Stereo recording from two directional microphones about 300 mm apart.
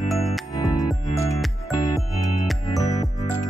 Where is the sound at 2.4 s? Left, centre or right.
Centre.